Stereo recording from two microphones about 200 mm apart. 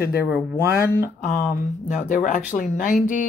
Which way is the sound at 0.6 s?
10° right (ahead or behind).